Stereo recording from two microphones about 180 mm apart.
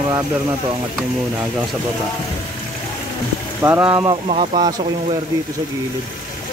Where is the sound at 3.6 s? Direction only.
10° right (ahead or behind).